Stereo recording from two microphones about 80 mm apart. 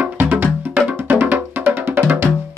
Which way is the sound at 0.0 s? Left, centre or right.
Right.